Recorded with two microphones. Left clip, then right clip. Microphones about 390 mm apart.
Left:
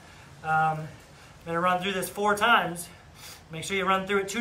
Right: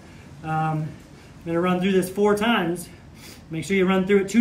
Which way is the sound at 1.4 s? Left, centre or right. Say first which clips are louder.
Right 2 dB; left.